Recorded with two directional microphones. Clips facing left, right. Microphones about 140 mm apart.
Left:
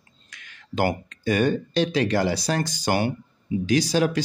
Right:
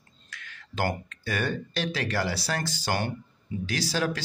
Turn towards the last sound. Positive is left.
turn(degrees=15)  # may be behind; listen again after turning